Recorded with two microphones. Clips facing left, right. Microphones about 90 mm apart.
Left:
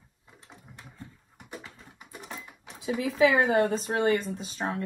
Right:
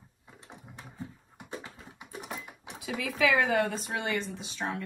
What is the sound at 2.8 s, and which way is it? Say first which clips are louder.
Speech: left 6 dB; 30° left (ahead or behind).